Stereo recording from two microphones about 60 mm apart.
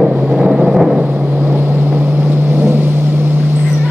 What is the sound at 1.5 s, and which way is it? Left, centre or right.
Vehicle, right.